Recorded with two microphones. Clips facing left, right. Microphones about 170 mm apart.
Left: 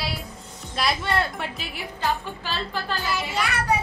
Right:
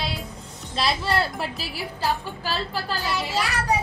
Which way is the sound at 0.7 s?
30° right (ahead or behind).